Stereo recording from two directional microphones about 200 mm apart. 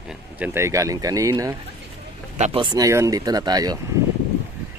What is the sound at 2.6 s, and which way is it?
Speech, 20° right (ahead or behind).